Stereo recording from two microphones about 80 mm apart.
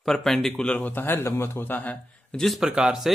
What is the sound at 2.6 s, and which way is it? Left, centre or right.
Speech, centre.